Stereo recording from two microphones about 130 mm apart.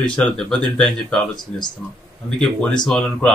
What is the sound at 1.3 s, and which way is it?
Speech, 35° left (ahead or behind).